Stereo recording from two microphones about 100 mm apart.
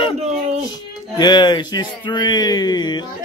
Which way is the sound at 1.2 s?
50° left (ahead or behind).